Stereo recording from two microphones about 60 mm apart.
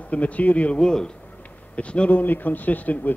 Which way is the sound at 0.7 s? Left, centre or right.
Centre.